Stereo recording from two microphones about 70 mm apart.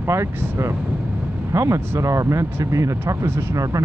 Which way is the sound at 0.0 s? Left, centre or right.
Right.